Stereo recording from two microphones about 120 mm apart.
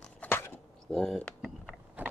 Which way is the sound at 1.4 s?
10° right (ahead or behind).